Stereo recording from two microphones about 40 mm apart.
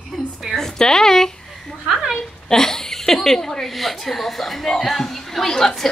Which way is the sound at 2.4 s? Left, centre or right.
Centre.